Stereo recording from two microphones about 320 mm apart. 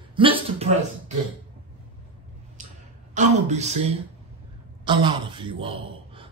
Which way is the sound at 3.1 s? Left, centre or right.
Right.